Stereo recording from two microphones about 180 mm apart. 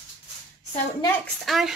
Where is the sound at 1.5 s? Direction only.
Centre (ahead or behind).